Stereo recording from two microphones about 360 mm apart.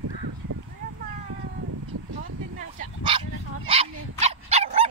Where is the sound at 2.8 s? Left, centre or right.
Centre.